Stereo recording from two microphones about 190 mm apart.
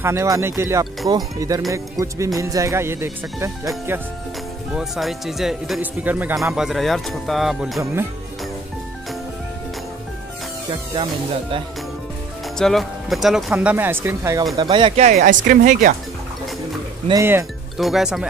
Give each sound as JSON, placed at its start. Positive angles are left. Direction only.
{"t": 0.0, "sound": "speech", "side_deg": -15}
{"t": 4.7, "sound": "speech", "side_deg": 0}
{"t": 7.8, "sound": "speech", "side_deg": -10}
{"t": 12.5, "sound": "speech", "side_deg": 0}
{"t": 15.4, "sound": "speech", "side_deg": -45}
{"t": 17.1, "sound": "speech", "side_deg": -15}
{"t": 17.7, "sound": "speech", "side_deg": 0}